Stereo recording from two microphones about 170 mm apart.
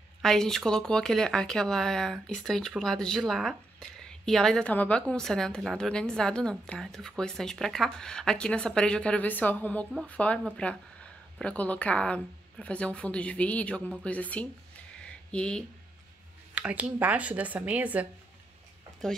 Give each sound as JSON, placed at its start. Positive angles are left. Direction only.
{"t": 0.2, "sound": "speech", "side_deg": 0}
{"t": 16.6, "sound": "speech", "side_deg": -10}